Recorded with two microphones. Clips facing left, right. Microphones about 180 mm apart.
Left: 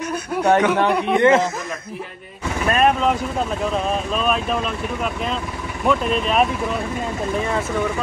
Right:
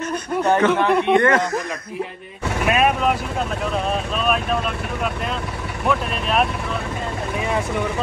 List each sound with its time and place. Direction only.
0.0 s speech: 10° left (ahead or behind)
1.2 s speech: 25° left (ahead or behind)
2.7 s speech: 5° right (ahead or behind)
7.3 s speech: 15° right (ahead or behind)